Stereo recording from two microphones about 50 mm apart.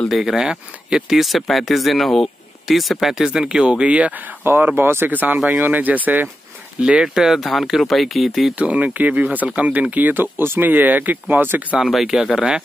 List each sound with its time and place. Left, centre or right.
0.1 s speech: centre
3.3 s speech: centre
4.7 s speech: right
5.1 s speech: right
6.8 s speech: centre
8.5 s speech: right
10.7 s speech: right
11.8 s speech: centre
12.4 s speech: centre